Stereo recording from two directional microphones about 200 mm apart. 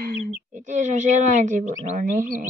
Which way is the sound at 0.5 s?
35° right (ahead or behind).